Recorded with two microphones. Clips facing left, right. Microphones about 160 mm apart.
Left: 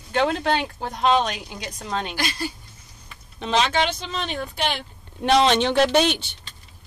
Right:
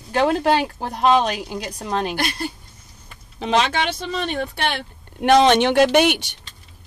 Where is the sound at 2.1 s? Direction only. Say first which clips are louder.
Right 3 dB; 55° right (ahead or behind).